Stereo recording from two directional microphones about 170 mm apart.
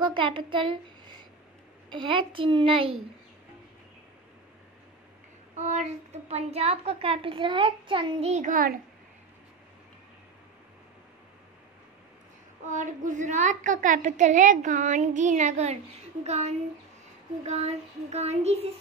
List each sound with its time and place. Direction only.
0.0 s a woman's voice: 30° right (ahead or behind)
5.6 s a woman's voice: 45° right (ahead or behind)
8.3 s a child's voice: 45° right (ahead or behind)
12.6 s a child's voice: 45° right (ahead or behind)